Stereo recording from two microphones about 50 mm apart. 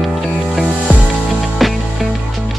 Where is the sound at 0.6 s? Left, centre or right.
Right.